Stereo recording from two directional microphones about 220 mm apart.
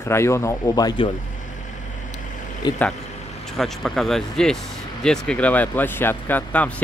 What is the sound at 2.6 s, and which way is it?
Speech, 20° left (ahead or behind).